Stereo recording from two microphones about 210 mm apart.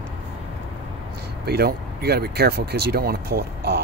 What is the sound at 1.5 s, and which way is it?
Speech, 50° right (ahead or behind).